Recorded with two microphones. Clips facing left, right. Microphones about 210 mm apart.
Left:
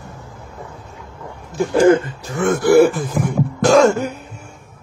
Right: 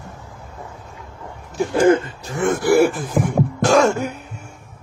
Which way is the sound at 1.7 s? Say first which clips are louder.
Left 2 dB; 25° left (ahead or behind).